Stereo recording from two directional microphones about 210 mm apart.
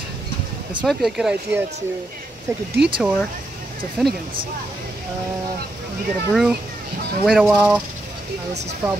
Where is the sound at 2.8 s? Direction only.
55° right (ahead or behind).